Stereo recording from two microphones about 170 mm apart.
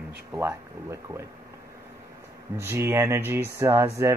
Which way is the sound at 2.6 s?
15° right (ahead or behind).